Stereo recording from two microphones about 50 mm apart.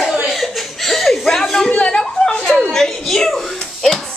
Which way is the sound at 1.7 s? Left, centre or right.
Centre.